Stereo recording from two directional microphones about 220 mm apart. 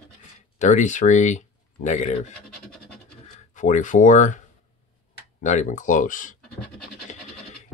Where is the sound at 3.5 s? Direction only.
35° left (ahead or behind).